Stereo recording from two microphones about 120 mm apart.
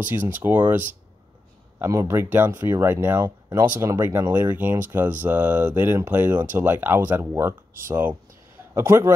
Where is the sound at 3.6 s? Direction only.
20° right (ahead or behind).